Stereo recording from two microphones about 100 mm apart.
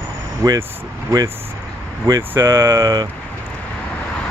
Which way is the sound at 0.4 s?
35° right (ahead or behind).